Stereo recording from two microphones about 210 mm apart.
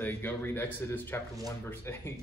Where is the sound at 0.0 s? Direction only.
10° left (ahead or behind).